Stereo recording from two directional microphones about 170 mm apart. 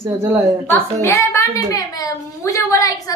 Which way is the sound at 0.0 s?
15° right (ahead or behind).